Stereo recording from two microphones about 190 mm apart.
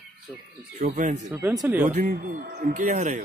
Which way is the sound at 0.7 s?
45° right (ahead or behind).